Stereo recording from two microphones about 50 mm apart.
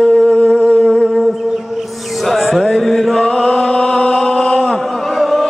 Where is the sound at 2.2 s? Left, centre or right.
Centre.